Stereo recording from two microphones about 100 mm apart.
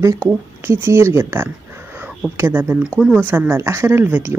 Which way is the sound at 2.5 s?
20° right (ahead or behind).